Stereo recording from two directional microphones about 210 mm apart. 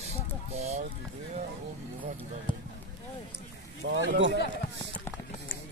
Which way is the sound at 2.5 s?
25° left (ahead or behind).